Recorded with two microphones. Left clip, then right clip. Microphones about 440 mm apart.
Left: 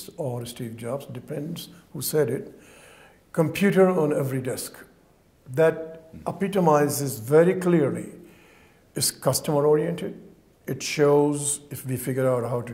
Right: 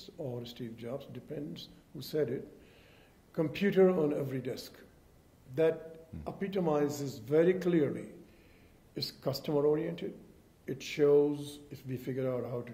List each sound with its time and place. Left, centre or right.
0.0 s speech: left
8.9 s speech: left